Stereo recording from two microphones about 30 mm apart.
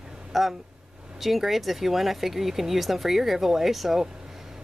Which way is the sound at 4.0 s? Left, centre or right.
Centre.